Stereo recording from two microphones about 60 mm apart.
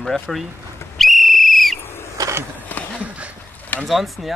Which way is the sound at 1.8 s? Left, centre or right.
Left.